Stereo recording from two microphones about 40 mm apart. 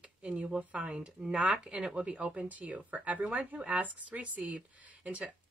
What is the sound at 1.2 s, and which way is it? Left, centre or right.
Speech, centre.